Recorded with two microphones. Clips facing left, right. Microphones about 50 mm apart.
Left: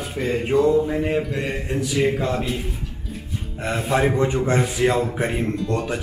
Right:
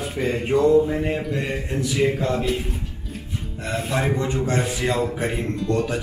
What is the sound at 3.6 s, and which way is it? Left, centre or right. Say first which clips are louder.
Speech: left 3 dB; left.